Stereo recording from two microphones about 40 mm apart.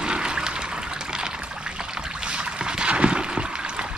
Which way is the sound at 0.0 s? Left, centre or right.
Right.